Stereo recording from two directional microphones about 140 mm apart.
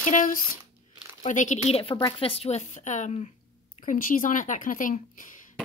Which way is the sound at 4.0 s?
75° left (ahead or behind).